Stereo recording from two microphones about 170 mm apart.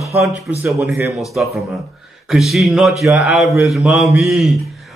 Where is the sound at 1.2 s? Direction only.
Centre (ahead or behind).